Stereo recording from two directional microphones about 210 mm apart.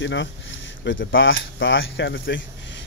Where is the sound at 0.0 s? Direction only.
60° left (ahead or behind).